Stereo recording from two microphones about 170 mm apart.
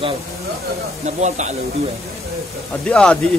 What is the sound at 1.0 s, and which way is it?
Speech, 45° right (ahead or behind).